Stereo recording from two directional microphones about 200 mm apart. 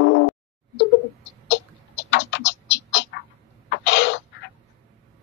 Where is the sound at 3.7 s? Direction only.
60° left (ahead or behind).